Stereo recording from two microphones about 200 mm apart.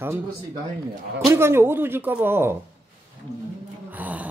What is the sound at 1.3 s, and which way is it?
Speech, 10° right (ahead or behind).